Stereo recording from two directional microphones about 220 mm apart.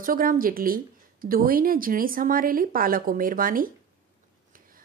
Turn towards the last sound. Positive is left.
turn(degrees=-40)  # may be behind; listen again after turning